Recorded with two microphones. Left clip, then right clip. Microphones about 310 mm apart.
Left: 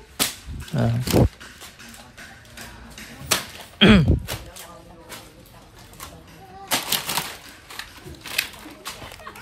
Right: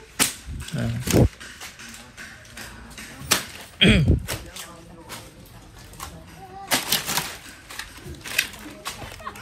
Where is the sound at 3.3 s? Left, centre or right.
Centre.